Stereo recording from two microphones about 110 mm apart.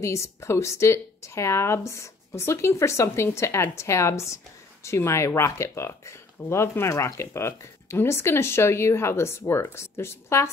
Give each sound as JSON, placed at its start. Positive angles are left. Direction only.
{"t": 0.0, "sound": "speech", "side_deg": 25}